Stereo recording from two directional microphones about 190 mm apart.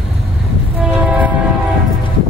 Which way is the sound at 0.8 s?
5° right (ahead or behind).